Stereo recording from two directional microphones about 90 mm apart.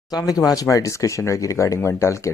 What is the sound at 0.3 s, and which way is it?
Speech, 40° left (ahead or behind).